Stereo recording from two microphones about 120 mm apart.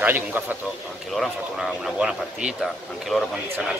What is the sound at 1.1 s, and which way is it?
Speech, centre (ahead or behind).